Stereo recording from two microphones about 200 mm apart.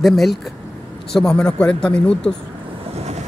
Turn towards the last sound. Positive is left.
turn(degrees=-35)  # may be behind; listen again after turning